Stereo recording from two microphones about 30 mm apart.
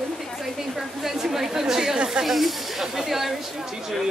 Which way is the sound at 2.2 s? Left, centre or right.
Centre.